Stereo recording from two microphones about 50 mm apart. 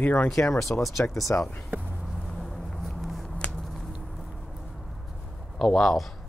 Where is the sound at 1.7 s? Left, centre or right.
Right.